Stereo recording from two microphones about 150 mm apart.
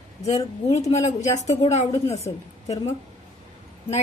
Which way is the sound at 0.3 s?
45° left (ahead or behind).